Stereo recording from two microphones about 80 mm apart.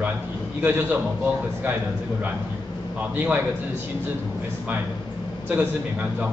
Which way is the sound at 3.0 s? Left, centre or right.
Centre.